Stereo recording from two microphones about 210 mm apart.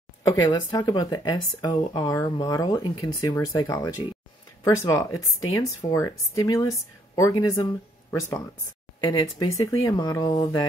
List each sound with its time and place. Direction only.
0.4 s speech: 20° left (ahead or behind)